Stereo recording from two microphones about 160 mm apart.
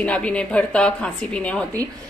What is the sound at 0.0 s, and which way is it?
A woman's voice, 5° left (ahead or behind).